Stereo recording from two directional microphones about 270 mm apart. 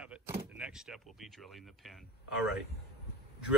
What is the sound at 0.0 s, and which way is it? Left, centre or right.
Power windows, centre.